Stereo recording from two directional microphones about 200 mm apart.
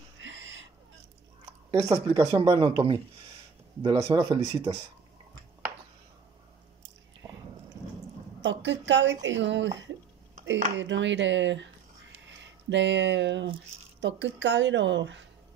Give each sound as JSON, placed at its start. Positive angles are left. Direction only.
{"t": 0.2, "sound": "a sound", "side_deg": -65}
{"t": 1.4, "sound": "speech", "side_deg": -15}
{"t": 8.4, "sound": "a woman's voice", "side_deg": -65}